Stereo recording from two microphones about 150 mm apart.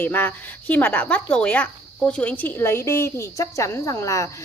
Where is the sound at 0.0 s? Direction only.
15° left (ahead or behind).